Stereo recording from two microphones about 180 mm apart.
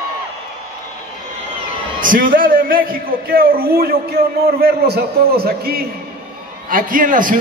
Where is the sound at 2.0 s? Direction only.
50° right (ahead or behind).